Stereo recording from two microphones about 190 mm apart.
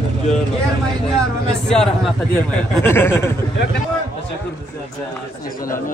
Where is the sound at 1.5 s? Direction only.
5° left (ahead or behind).